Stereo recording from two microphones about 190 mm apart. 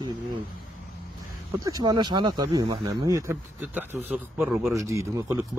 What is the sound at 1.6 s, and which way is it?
Speech, 20° right (ahead or behind).